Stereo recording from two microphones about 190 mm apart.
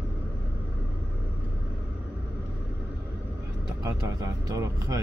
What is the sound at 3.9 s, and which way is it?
Vehicle, 15° right (ahead or behind).